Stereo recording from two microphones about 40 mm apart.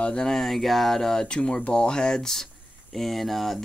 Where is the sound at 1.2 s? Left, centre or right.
Left.